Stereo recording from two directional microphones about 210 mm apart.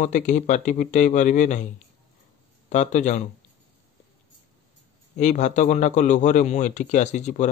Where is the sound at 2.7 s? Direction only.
35° left (ahead or behind).